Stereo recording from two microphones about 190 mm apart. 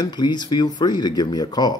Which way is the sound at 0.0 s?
20° left (ahead or behind).